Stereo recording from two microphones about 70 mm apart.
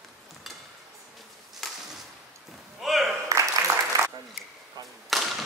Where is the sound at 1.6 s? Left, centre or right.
Centre.